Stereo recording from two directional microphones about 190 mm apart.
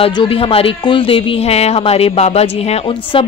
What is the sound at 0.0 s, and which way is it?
Speech, 25° left (ahead or behind).